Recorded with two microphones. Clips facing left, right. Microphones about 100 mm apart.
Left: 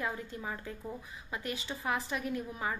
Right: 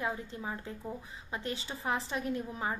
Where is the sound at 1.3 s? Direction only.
30° right (ahead or behind).